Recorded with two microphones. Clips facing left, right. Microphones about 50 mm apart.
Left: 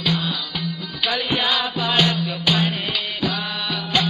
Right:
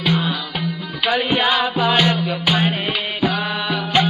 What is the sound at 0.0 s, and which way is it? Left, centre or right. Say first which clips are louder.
Music: right 3 dB; right.